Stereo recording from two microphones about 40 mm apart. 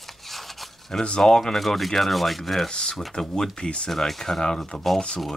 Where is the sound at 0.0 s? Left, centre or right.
Centre.